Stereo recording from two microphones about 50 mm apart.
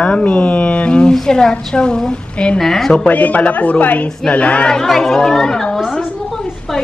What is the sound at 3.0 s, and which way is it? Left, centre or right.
Speech, left.